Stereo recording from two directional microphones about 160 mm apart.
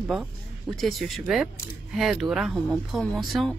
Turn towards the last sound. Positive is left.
turn(degrees=0)  # may be behind; listen again after turning